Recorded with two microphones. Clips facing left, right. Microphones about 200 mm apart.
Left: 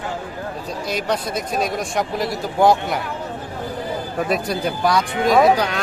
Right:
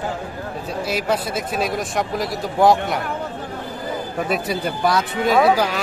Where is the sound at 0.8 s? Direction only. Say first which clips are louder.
Right 1 dB; 5° right (ahead or behind).